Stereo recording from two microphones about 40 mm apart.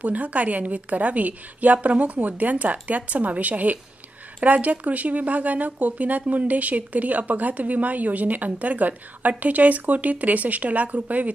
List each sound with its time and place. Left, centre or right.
0.0 s speech: right